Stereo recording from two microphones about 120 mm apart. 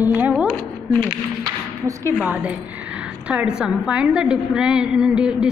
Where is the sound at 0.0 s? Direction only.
15° right (ahead or behind).